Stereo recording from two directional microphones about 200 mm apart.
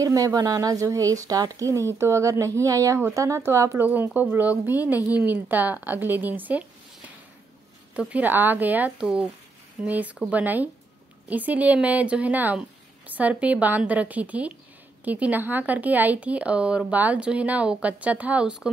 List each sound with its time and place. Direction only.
0.0 s a woman's voice: 15° right (ahead or behind)
7.9 s a woman's voice: 5° right (ahead or behind)